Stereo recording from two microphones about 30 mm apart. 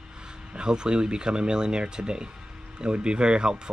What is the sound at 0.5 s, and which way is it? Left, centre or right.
Speech, right.